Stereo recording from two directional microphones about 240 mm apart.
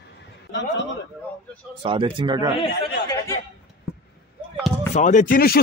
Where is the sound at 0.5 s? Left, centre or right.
Left.